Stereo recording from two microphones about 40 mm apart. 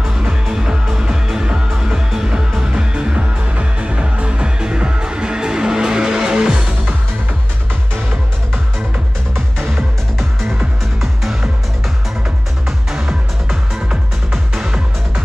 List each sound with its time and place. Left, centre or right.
0.0 s music: centre
12.6 s music: centre
14.6 s music: centre